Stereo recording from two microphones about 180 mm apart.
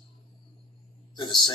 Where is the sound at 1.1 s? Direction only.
25° left (ahead or behind).